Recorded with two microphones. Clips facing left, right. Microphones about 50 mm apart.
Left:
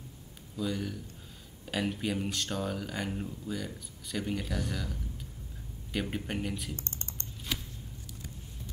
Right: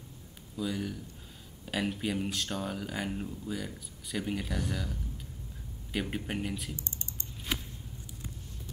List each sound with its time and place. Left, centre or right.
0.6 s speech: centre
5.9 s speech: centre
6.8 s typing: left
7.5 s a sound: right